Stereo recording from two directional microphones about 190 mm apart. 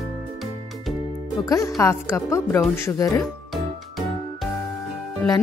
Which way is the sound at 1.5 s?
15° left (ahead or behind).